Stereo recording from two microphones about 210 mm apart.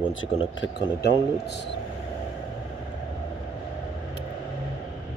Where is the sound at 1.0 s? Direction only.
55° left (ahead or behind).